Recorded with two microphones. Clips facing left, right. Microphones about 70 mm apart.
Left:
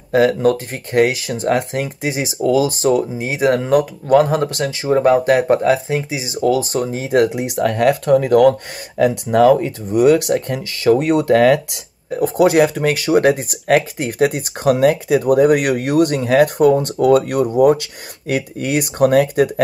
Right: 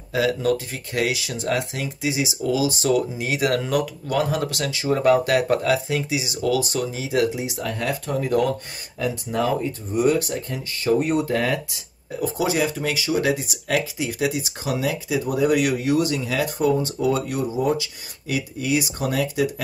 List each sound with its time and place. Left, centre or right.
0.1 s speech: left
7.2 s speech: left